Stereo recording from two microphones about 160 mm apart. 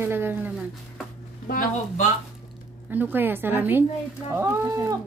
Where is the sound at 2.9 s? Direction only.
10° right (ahead or behind).